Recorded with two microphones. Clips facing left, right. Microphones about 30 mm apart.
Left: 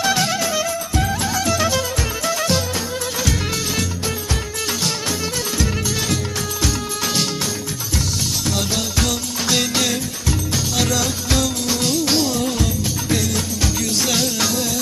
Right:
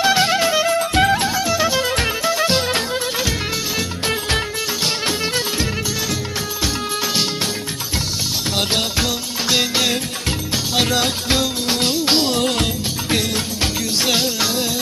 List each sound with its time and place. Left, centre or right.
0.0 s music: right
0.7 s music: right
1.4 s music: centre
2.9 s music: right
8.5 s music: right
8.9 s music: centre
10.5 s music: right
12.4 s music: right
13.1 s music: right
14.1 s music: right